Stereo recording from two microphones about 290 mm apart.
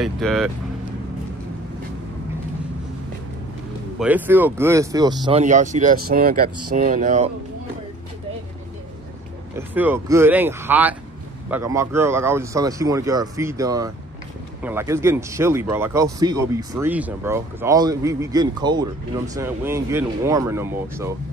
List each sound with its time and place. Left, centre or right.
0.0 s speech: centre
4.0 s speech: centre; by 7.2 s right
9.6 s speech: centre